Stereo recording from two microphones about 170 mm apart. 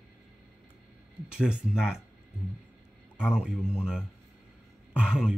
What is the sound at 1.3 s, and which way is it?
Speech, 5° right (ahead or behind).